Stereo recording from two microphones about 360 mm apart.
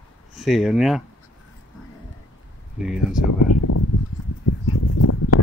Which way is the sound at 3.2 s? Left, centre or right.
Left.